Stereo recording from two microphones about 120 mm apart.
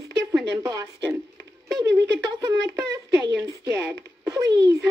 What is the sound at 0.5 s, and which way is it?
Speech, 30° right (ahead or behind).